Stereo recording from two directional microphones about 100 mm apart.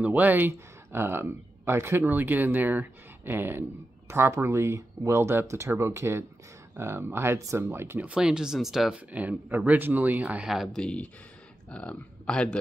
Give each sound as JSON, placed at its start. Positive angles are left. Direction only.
{"t": 0.0, "sound": "speech", "side_deg": -15}
{"t": 8.1, "sound": "speech", "side_deg": -5}
{"t": 9.1, "sound": "speech", "side_deg": -15}
{"t": 10.5, "sound": "speech", "side_deg": -5}
{"t": 10.8, "sound": "speech", "side_deg": 10}